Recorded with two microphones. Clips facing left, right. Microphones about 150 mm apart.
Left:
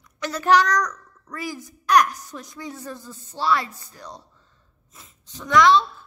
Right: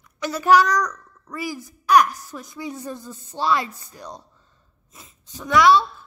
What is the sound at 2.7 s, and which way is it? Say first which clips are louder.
A child's voice: right 3 dB; 20° right (ahead or behind).